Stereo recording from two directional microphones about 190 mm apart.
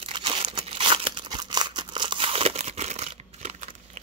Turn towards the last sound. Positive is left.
turn(degrees=-40)  # may be behind; listen again after turning